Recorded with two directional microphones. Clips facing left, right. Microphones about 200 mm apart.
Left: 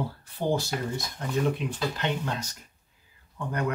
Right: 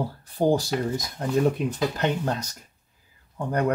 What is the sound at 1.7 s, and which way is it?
Speech, 45° right (ahead or behind).